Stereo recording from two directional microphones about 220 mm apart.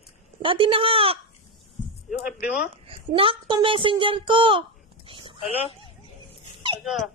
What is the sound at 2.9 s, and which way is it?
Speech, 25° right (ahead or behind).